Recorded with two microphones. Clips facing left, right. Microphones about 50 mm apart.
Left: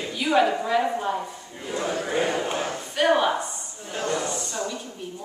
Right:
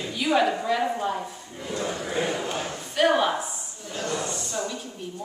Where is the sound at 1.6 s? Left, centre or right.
Centre.